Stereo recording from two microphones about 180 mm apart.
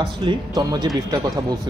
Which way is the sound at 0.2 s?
25° right (ahead or behind).